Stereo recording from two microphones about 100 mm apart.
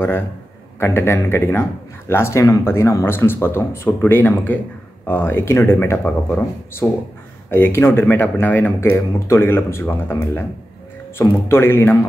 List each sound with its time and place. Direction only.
0.7 s a man's voice: 25° left (ahead or behind)